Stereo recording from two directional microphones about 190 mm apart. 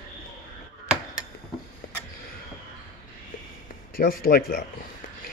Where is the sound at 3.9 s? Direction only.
50° left (ahead or behind).